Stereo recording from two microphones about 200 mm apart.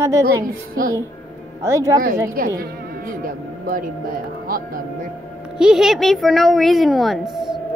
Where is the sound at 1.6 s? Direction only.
15° right (ahead or behind).